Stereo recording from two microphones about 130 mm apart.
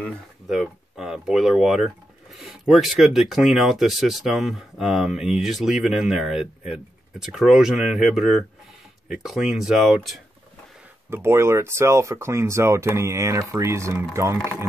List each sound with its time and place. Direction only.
0.5 s speech: 5° right (ahead or behind)
11.1 s speech: 20° right (ahead or behind)